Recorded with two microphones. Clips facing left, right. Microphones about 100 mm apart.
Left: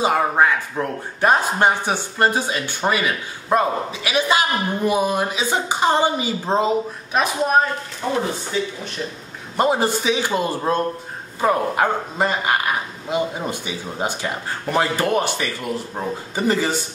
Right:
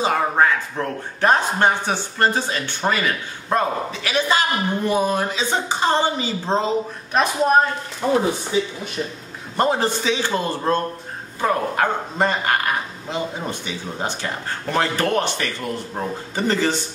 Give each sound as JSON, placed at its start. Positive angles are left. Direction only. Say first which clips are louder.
{"t": 0.0, "sound": "a man's voice", "louder": "left 1 dB", "side_deg": 10}
{"t": 8.0, "sound": "speech", "louder": "right 5 dB", "side_deg": -20}
{"t": 9.6, "sound": "a man's voice", "louder": "left 1 dB", "side_deg": 10}